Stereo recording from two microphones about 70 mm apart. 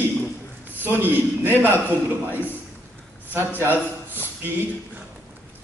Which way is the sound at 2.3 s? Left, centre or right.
Left.